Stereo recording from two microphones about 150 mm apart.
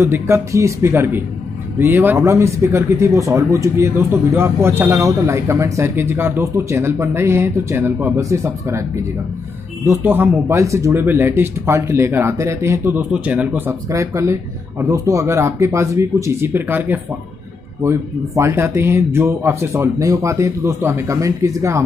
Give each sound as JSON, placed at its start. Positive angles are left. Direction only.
{"t": 0.0, "sound": "speech", "side_deg": -20}
{"t": 9.8, "sound": "speech", "side_deg": -15}